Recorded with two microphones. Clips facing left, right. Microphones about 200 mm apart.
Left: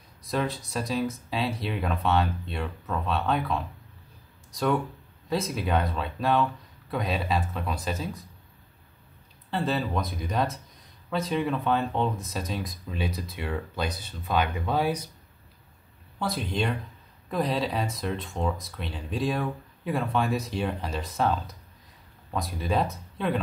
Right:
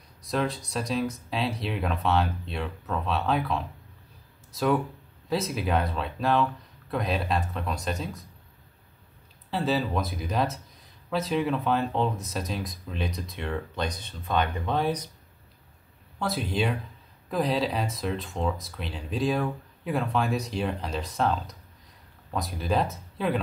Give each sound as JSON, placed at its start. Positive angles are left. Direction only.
{"t": 0.2, "sound": "speech", "side_deg": 0}
{"t": 9.5, "sound": "speech", "side_deg": 0}
{"t": 16.2, "sound": "speech", "side_deg": 0}